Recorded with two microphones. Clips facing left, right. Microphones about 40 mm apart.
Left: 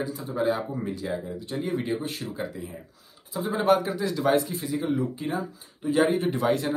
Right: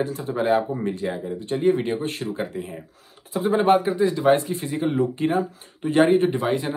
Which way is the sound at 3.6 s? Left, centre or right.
Right.